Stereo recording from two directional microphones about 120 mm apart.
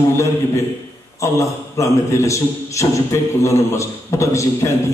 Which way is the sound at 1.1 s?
25° left (ahead or behind).